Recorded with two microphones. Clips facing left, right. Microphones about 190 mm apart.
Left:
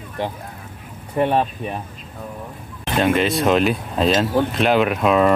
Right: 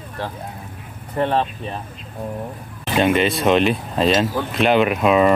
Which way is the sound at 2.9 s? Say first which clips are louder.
Right 1 dB; centre (ahead or behind).